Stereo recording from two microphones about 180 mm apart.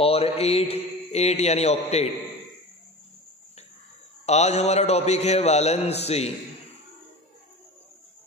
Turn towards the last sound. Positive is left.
turn(degrees=35)  # may be behind; listen again after turning